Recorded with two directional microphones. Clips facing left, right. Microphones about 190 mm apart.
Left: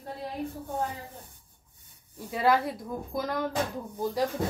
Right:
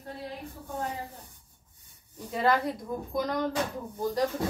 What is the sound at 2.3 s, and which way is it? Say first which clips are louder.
A woman's voice: left 1 dB; 5° left (ahead or behind).